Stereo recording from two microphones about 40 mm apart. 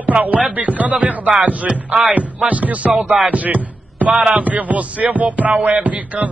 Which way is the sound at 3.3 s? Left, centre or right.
Right.